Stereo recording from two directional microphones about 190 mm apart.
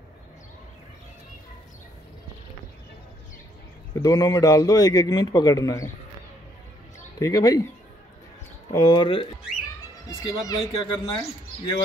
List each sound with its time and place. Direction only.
3.9 s a man's voice: 20° left (ahead or behind)
7.2 s a man's voice: 20° left (ahead or behind)
8.7 s a man's voice: 20° left (ahead or behind)